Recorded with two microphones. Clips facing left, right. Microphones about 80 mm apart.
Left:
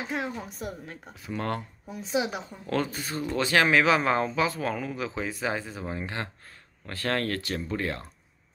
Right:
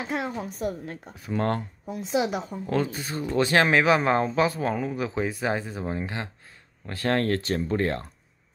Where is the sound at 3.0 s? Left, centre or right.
Right.